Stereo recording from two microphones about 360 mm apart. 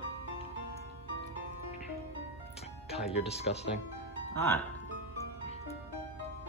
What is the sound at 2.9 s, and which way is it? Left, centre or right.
Speech, centre.